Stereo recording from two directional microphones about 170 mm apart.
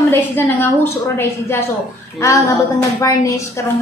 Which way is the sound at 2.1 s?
20° left (ahead or behind).